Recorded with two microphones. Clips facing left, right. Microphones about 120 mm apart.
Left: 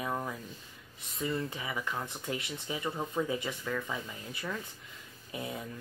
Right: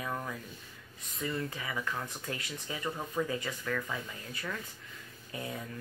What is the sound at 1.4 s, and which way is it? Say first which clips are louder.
Speech: even; 25° left (ahead or behind).